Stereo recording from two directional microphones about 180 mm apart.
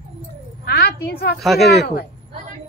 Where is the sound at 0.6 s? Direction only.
60° left (ahead or behind).